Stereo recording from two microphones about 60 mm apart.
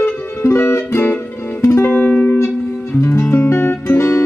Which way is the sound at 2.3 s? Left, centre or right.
Left.